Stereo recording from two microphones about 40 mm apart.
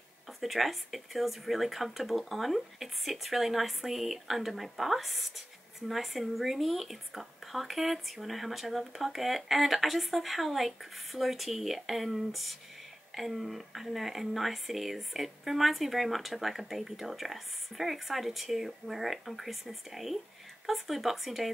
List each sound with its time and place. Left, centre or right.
0.4 s speech: centre